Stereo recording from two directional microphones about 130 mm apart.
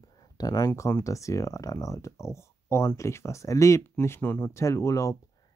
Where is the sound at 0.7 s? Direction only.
20° left (ahead or behind).